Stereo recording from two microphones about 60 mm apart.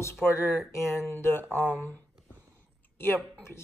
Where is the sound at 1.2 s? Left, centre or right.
Left.